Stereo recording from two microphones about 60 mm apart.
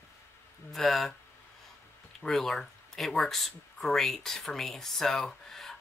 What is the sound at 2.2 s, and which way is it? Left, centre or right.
Speech, centre.